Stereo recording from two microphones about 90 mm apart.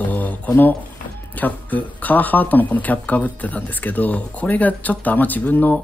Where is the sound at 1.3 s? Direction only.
20° left (ahead or behind).